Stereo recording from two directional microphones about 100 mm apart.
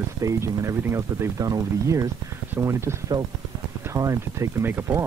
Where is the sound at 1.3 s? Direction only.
35° right (ahead or behind).